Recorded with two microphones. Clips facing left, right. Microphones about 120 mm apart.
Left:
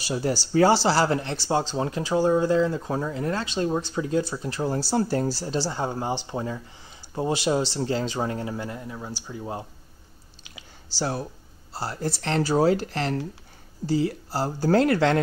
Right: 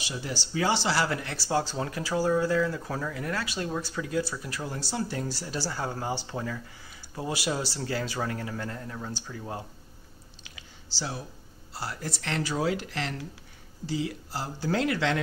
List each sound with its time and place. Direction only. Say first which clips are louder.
0.0 s speech: left 9 dB; 40° left (ahead or behind); by 9.7 s 20° left (ahead or behind)
11.0 s speech: left 8 dB; 45° left (ahead or behind)
11.7 s speech: left 6 dB; 30° left (ahead or behind)